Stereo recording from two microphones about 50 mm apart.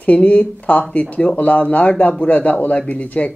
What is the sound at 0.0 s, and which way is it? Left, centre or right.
A man's voice, left.